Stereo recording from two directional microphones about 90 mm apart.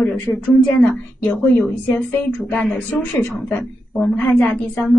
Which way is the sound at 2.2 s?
20° left (ahead or behind).